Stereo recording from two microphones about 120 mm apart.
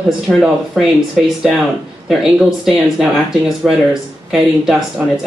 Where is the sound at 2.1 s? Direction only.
Centre (ahead or behind).